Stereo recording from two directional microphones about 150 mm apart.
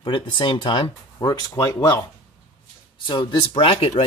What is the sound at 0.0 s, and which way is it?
Speech, 35° left (ahead or behind).